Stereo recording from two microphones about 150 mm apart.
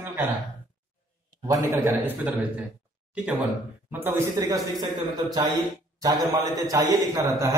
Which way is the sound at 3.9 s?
15° right (ahead or behind).